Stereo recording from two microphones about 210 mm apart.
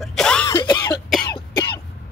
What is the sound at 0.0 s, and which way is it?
Throat clearing, 5° left (ahead or behind).